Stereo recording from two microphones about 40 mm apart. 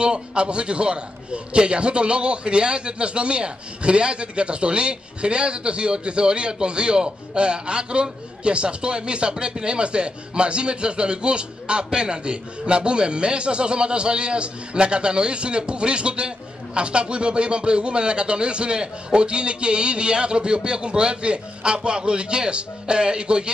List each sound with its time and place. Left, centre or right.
0.0 s a man's voice: right